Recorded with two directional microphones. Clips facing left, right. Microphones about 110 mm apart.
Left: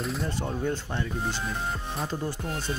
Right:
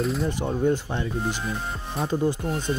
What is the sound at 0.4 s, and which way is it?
Speech, 15° right (ahead or behind).